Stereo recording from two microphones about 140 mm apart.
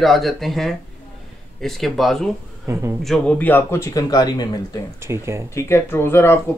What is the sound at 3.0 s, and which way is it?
Speech, 5° left (ahead or behind).